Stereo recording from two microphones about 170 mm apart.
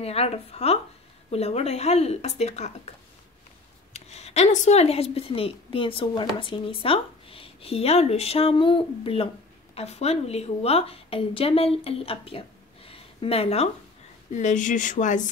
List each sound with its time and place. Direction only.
0.0 s speech: 35° left (ahead or behind)
3.9 s a woman's voice: 40° left (ahead or behind)
14.3 s speech: 45° left (ahead or behind)